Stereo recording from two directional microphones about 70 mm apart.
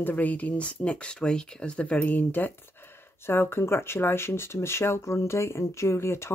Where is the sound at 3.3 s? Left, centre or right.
Left.